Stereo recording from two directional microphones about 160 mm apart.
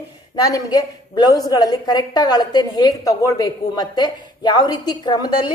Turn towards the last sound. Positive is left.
turn(degrees=25)  # may be behind; listen again after turning